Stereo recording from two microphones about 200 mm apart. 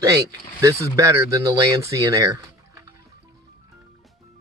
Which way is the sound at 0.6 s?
15° right (ahead or behind).